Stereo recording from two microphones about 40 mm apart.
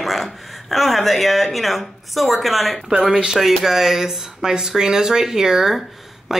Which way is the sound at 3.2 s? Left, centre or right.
Centre.